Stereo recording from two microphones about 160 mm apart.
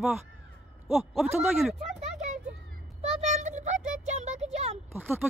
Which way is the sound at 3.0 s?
45° right (ahead or behind).